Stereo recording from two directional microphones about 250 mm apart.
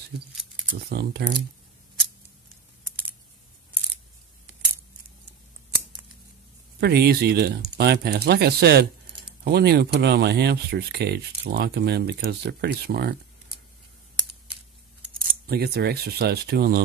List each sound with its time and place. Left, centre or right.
0.3 s a sound: centre
0.7 s speech: right
6.8 s speech: right
15.4 s speech: right